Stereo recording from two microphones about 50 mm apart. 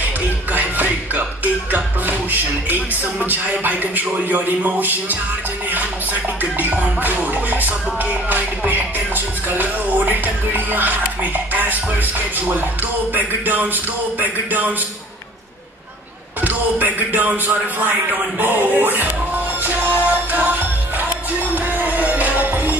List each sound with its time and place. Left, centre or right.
0.0 s speech: right
6.4 s music: right
13.1 s music: right
16.4 s music: right